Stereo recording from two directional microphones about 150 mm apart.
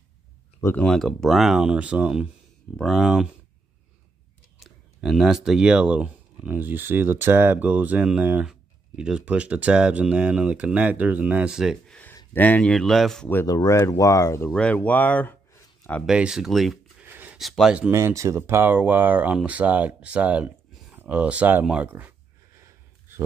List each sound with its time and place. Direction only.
0.6 s speech: 15° left (ahead or behind)
0.8 s speech: centre (ahead or behind)
4.6 s speech: centre (ahead or behind)
12.4 s speech: 10° left (ahead or behind)
13.3 s speech: 15° left (ahead or behind)
14.5 s speech: 5° left (ahead or behind)
16.1 s speech: 5° right (ahead or behind)
17.0 s a sound: 10° right (ahead or behind)
17.4 s speech: centre (ahead or behind)
17.9 s speech: 20° right (ahead or behind)